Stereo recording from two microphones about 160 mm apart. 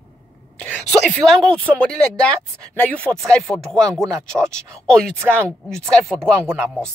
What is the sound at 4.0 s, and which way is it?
Speech, 20° right (ahead or behind).